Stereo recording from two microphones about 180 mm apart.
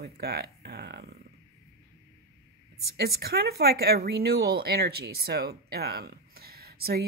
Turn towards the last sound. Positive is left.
turn(degrees=-60)  # may be behind; listen again after turning